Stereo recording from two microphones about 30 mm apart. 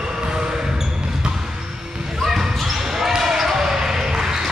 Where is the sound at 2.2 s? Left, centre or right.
Centre.